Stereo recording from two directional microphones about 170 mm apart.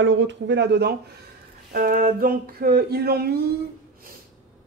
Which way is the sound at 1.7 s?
55° right (ahead or behind).